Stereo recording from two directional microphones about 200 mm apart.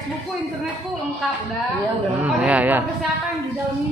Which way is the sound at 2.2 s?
5° right (ahead or behind).